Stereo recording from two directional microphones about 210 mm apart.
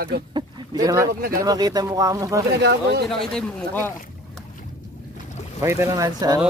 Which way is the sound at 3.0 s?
Centre (ahead or behind).